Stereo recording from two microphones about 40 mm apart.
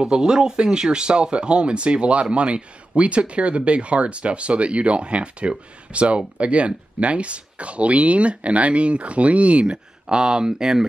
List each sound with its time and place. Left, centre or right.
0.0 s speech: centre